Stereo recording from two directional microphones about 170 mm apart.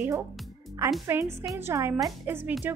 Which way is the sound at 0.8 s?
15° right (ahead or behind).